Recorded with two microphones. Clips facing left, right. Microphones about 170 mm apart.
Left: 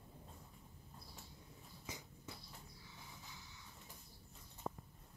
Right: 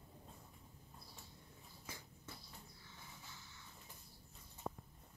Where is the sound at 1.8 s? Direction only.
15° left (ahead or behind).